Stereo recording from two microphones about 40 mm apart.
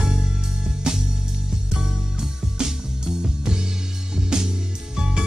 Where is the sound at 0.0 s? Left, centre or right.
Centre.